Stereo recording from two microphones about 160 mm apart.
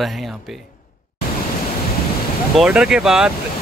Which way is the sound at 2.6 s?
5° right (ahead or behind).